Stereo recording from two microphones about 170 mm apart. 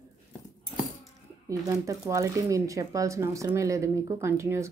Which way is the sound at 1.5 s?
20° right (ahead or behind).